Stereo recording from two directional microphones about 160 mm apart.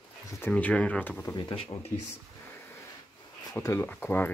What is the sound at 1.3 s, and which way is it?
Speech, 30° left (ahead or behind).